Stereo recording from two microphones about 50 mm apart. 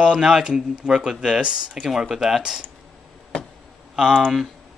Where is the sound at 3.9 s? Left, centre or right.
Centre.